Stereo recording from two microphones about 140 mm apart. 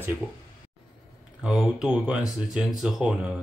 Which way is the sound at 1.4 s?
5° right (ahead or behind).